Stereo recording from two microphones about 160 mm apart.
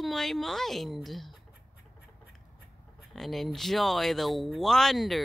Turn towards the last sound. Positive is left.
turn(degrees=0)  # may be behind; listen again after turning